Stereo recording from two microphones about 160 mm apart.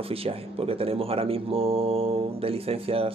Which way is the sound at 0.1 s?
35° right (ahead or behind).